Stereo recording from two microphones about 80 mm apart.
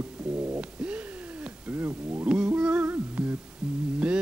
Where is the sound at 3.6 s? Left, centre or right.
Centre.